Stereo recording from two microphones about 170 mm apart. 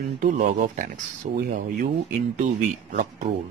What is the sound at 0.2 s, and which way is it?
Speech, 50° right (ahead or behind).